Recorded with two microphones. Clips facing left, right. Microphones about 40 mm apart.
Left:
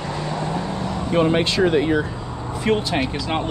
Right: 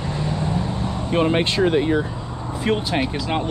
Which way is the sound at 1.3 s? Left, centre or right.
Right.